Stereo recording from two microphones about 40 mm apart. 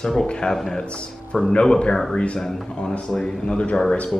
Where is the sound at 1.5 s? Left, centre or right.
Left.